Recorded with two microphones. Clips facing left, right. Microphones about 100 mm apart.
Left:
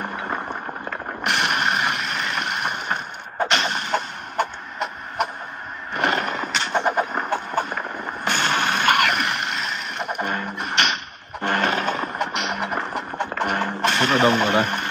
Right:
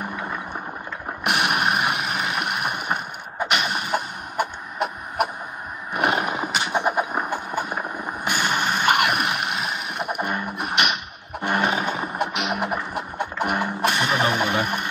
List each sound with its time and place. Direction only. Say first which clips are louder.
1.2 s vehicle: right 1 dB; 10° right (ahead or behind)
3.4 s heart murmur: even; 10° right (ahead or behind)
5.9 s horse: even; 10° right (ahead or behind)
8.8 s music: right 1 dB; 10° right (ahead or behind)